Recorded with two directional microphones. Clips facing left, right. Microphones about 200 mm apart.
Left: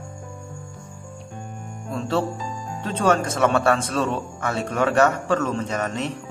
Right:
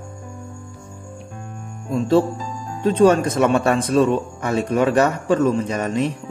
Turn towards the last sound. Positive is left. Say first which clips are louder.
# right 5 dB
turn(degrees=-15)  # may be behind; listen again after turning